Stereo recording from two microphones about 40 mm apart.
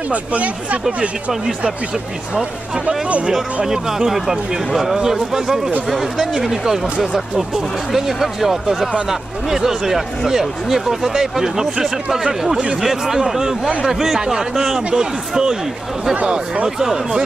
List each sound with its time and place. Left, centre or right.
0.1 s speech: right
2.3 s speech: centre
16.2 s speech: right
16.6 s speech: centre